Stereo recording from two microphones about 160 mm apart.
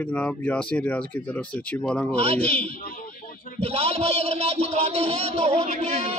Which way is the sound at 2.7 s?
60° left (ahead or behind).